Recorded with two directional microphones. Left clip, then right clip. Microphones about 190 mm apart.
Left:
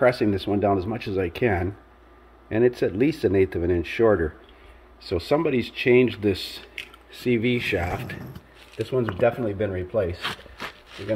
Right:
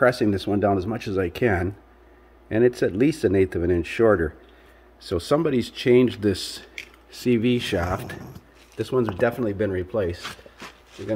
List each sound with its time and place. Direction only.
0.0 s speech: 25° right (ahead or behind)